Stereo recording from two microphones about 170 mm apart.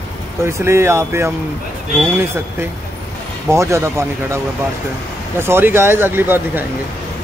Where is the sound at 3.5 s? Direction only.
15° right (ahead or behind).